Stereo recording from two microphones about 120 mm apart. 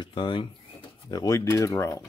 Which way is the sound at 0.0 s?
45° left (ahead or behind).